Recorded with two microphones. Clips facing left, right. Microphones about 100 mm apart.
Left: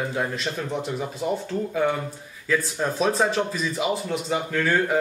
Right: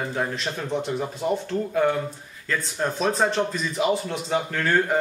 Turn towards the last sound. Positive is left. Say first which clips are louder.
# even
turn(degrees=0)  # may be behind; listen again after turning